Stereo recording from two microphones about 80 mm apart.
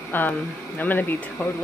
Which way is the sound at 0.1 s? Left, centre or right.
Left.